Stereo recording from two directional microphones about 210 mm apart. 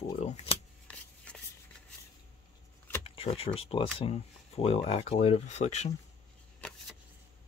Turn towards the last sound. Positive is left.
turn(degrees=5)  # may be behind; listen again after turning